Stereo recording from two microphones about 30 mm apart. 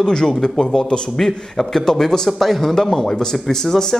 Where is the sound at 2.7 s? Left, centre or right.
Centre.